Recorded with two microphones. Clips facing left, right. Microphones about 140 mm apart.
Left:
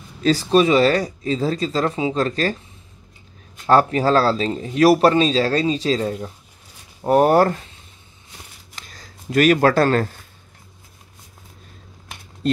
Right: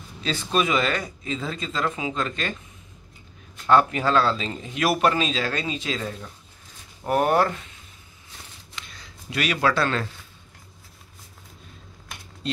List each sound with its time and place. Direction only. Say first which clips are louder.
0.2 s speech: left 9 dB; 35° left (ahead or behind)
3.6 s speech: left 4 dB; 35° left (ahead or behind)
8.7 s shuffling cards: left 1 dB; 40° left (ahead or behind)